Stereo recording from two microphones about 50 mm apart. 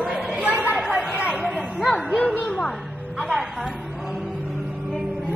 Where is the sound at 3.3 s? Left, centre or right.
Centre.